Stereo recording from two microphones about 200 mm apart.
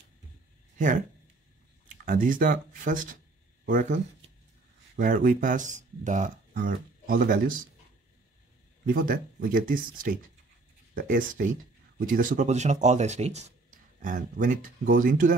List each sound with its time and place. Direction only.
0.7 s speech: 40° right (ahead or behind)
8.8 s speech: 45° right (ahead or behind)